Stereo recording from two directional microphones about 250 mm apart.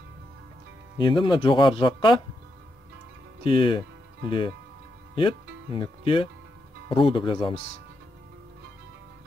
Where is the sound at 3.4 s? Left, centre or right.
Left.